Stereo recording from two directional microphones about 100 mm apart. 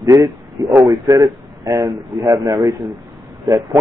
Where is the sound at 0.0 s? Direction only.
30° right (ahead or behind).